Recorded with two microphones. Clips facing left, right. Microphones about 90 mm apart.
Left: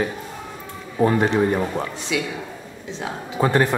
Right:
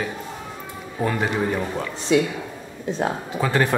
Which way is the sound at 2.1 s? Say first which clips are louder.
Right 7 dB; 40° right (ahead or behind).